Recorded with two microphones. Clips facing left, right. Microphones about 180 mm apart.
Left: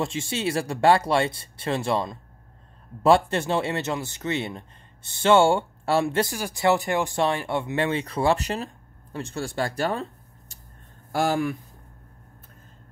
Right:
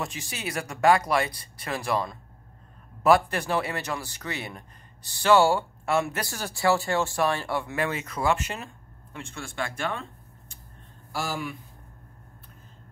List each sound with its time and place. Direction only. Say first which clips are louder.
0.0 s speech: left 7 dB; 25° left (ahead or behind)
6.3 s speech: left 2 dB; 15° left (ahead or behind); by 10.0 s 35° left (ahead or behind)
11.1 s speech: left 8 dB; 55° left (ahead or behind)